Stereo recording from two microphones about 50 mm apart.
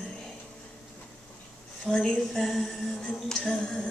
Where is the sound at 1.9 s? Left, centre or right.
Centre.